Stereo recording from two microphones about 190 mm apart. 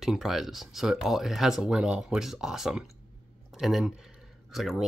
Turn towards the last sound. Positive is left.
turn(degrees=0)  # may be behind; listen again after turning